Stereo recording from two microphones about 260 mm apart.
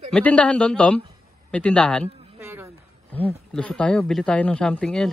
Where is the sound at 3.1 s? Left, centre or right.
Centre.